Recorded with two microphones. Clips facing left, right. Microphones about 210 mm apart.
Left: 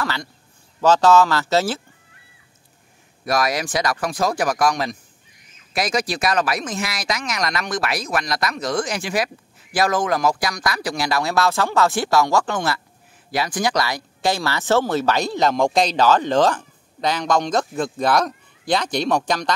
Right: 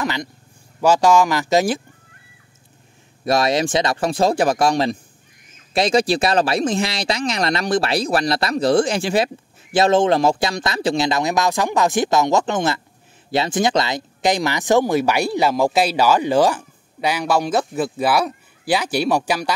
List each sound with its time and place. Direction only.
0.0 s speech: 20° right (ahead or behind)
3.3 s speech: 25° right (ahead or behind); by 19.5 s 10° right (ahead or behind)